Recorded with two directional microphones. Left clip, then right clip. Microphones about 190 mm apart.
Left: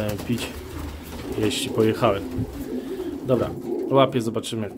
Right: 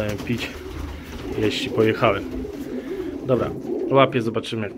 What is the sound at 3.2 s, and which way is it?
Speech, 15° left (ahead or behind).